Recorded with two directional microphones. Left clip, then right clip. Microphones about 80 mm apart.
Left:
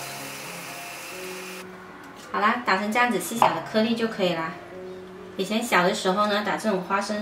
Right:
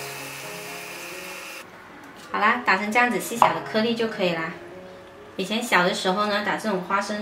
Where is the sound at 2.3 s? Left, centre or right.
Centre.